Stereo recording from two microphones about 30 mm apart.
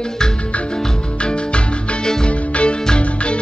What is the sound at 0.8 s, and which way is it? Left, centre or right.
Music, left.